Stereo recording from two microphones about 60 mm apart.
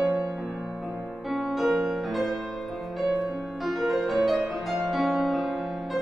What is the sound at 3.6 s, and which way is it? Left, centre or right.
Music, centre.